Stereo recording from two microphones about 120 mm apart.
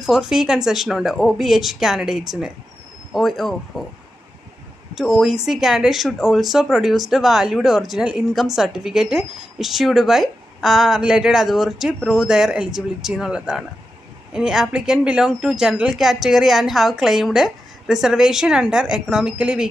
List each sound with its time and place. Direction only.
0.0 s a woman's voice: 5° right (ahead or behind)
4.9 s a woman's voice: centre (ahead or behind)